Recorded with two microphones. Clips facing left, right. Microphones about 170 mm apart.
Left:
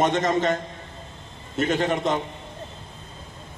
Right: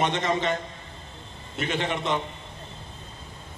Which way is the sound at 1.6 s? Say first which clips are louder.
Left 5 dB; 45° left (ahead or behind).